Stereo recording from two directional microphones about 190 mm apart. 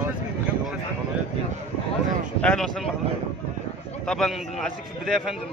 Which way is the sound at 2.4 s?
5° left (ahead or behind).